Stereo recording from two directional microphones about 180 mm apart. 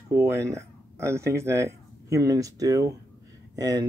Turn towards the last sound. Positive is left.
turn(degrees=-20)  # may be behind; listen again after turning